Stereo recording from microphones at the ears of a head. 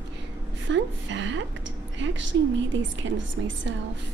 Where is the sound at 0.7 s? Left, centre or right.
Right.